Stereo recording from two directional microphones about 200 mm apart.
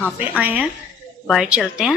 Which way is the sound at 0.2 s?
10° right (ahead or behind).